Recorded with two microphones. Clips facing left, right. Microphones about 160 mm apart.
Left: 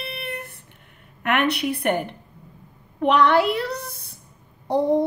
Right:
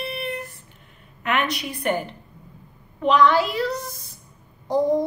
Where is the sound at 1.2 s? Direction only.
60° left (ahead or behind).